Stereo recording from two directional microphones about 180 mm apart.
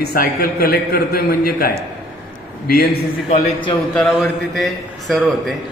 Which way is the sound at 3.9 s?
Centre (ahead or behind).